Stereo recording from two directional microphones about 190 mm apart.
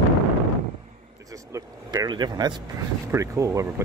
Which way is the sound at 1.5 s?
20° right (ahead or behind).